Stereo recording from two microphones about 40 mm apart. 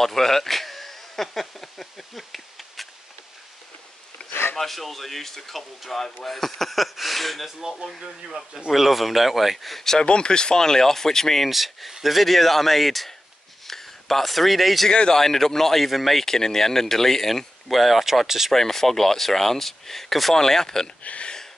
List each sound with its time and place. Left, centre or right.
0.0 s speech: centre
4.3 s a sound: left
4.6 s speech: centre
8.7 s speech: centre
10.0 s speech: left
11.5 s speech: centre
14.9 s speech: centre
18.5 s speech: centre
21.0 s speech: left